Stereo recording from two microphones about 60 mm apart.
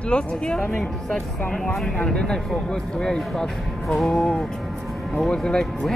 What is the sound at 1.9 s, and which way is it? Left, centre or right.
Speech, centre.